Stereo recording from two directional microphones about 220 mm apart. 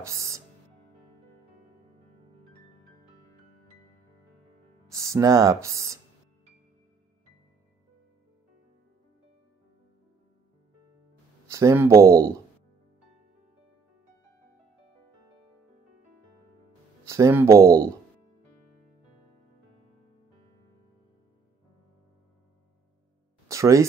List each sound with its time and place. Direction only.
0.0 s speech: 15° right (ahead or behind)
4.8 s speech: 15° right (ahead or behind)
11.5 s speech: 10° right (ahead or behind)
12.1 s speech: 40° right (ahead or behind)
17.1 s speech: 10° right (ahead or behind)
17.6 s speech: 40° right (ahead or behind)
23.5 s speech: 15° right (ahead or behind)